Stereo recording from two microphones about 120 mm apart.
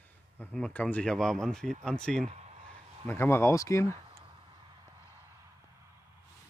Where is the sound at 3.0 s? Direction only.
20° left (ahead or behind).